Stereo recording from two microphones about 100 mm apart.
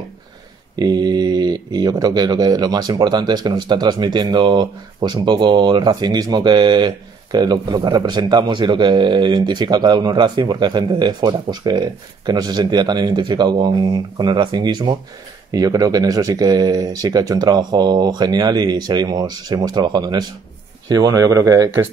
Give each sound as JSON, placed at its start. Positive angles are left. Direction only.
{"t": 0.7, "sound": "speech", "side_deg": -45}